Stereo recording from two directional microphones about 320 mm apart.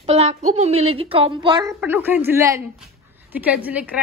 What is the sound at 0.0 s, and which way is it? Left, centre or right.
A woman's voice, centre.